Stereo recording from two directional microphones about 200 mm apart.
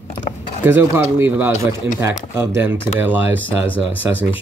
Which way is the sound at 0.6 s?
10° right (ahead or behind).